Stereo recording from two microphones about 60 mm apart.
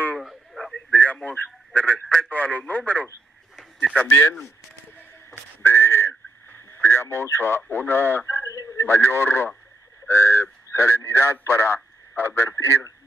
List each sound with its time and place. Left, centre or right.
0.2 s radio: centre
0.9 s radio: left
1.3 s a man's voice: left
4.2 s a man's voice: left
5.3 s whistling: left
7.7 s a man's voice: left
8.5 s radio: left
8.7 s a man's voice: left